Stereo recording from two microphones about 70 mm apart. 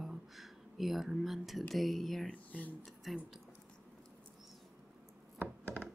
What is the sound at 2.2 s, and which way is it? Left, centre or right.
Speech, left.